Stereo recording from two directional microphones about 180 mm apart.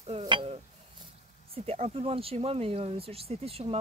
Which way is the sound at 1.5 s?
35° right (ahead or behind).